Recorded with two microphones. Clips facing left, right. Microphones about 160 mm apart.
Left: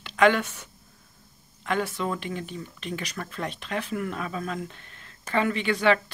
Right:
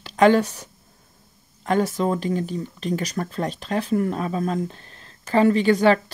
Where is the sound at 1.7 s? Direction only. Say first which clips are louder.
Right 7 dB; 40° right (ahead or behind).